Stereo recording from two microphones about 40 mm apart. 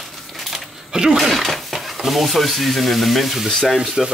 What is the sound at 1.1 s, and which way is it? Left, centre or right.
Speech, centre.